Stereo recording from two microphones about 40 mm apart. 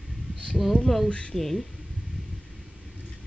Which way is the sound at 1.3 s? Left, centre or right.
Centre.